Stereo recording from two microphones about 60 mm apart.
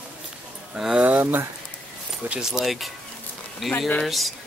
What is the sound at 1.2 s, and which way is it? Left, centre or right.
Speech, right.